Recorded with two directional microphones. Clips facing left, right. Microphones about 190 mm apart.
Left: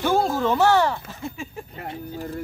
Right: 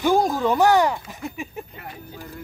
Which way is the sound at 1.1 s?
15° right (ahead or behind).